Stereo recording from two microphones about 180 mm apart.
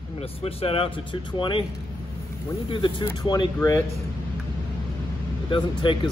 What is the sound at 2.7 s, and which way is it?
Speech, 25° left (ahead or behind).